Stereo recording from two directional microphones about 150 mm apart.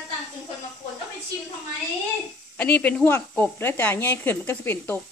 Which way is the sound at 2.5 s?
10° left (ahead or behind).